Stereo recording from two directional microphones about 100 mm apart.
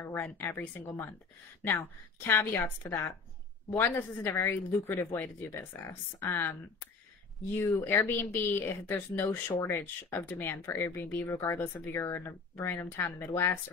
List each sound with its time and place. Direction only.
0.0 s speech: 20° left (ahead or behind)
2.2 s speech: 25° left (ahead or behind)
7.5 s speech: 25° left (ahead or behind)